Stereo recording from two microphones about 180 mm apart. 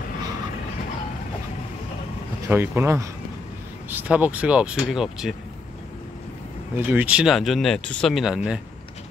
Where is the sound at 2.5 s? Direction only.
10° right (ahead or behind).